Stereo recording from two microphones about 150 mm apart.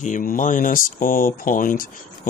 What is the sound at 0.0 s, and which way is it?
Speech, 60° left (ahead or behind).